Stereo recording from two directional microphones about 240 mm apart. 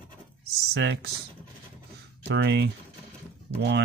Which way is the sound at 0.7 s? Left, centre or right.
Right.